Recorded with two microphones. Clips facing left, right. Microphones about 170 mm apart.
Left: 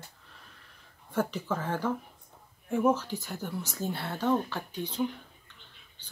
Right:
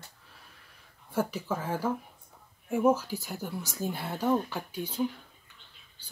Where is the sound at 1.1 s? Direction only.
10° right (ahead or behind).